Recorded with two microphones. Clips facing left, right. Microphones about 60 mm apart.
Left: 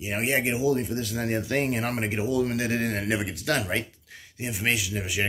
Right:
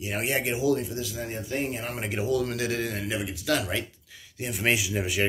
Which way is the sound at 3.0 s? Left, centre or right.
Left.